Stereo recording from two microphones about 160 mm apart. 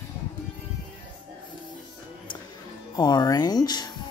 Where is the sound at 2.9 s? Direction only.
25° left (ahead or behind).